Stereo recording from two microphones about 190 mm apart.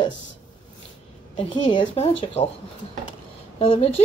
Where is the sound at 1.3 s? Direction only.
25° left (ahead or behind).